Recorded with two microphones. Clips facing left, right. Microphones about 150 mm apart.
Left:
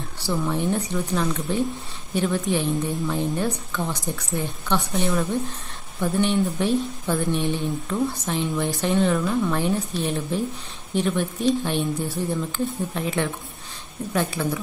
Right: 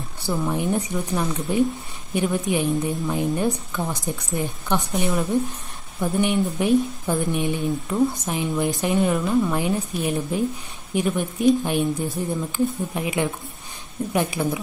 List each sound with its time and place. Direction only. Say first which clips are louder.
0.2 s speech: even; 10° right (ahead or behind)